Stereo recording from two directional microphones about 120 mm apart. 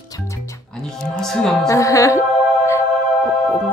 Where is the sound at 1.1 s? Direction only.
5° left (ahead or behind).